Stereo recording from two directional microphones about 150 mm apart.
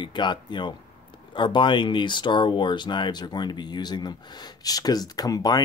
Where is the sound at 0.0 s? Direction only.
30° left (ahead or behind).